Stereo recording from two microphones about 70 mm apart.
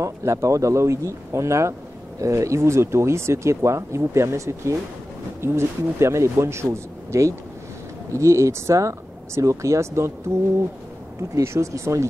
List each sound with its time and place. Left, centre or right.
0.0 s speech: right
11.1 s speech: right